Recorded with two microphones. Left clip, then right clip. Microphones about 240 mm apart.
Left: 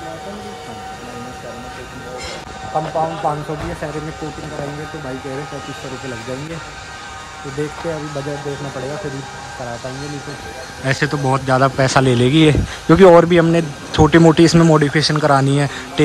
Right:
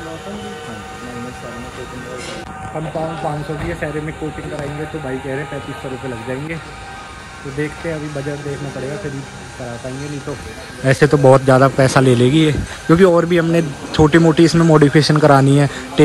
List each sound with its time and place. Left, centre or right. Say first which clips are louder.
3.2 s speech: left 3 dB; centre
10.9 s a man's voice: right 8 dB; centre